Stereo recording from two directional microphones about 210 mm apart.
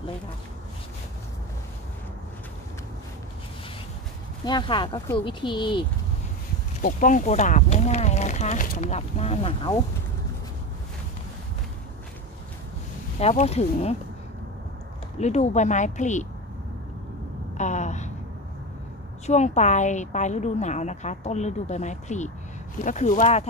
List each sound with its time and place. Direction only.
4.5 s speech: 20° left (ahead or behind)
6.8 s a woman's voice: 40° left (ahead or behind)
13.2 s speech: 30° left (ahead or behind)
15.1 s a woman's voice: 30° left (ahead or behind)
17.6 s a sound: 35° left (ahead or behind)
19.2 s a woman's voice: 35° left (ahead or behind)